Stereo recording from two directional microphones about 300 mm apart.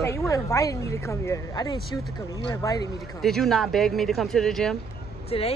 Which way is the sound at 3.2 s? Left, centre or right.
Centre.